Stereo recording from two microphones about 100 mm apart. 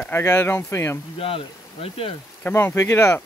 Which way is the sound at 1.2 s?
70° left (ahead or behind).